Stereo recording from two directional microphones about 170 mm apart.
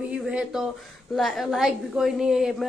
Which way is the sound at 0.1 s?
5° right (ahead or behind).